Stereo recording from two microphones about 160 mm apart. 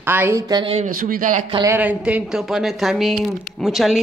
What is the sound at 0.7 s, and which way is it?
Speech, 55° right (ahead or behind).